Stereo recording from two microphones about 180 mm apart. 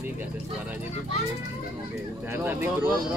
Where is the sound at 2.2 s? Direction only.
10° right (ahead or behind).